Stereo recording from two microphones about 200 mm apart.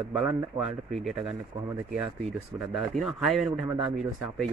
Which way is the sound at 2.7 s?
Centre (ahead or behind).